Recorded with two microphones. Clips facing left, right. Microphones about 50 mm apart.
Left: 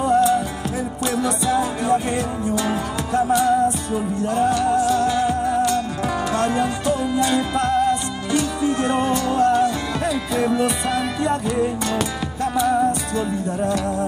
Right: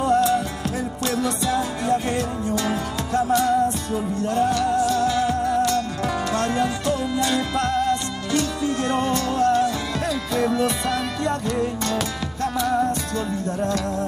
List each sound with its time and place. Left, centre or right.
0.0 s music: left